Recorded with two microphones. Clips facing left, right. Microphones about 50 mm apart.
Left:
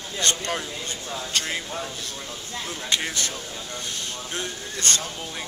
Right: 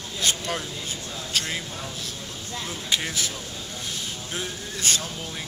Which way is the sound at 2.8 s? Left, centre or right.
Centre.